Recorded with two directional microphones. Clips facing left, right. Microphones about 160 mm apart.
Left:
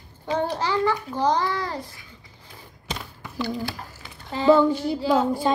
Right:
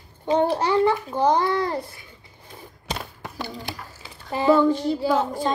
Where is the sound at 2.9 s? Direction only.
45° right (ahead or behind).